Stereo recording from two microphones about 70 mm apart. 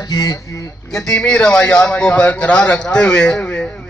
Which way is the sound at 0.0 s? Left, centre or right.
Left.